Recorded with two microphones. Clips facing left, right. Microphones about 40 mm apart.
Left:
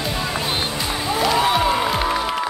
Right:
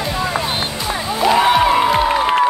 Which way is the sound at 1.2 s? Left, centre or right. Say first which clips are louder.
Right 6 dB; centre.